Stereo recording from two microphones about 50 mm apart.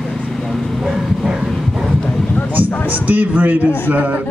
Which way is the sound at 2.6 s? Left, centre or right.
Right.